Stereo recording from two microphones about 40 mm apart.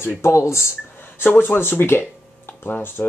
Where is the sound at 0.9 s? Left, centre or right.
Left.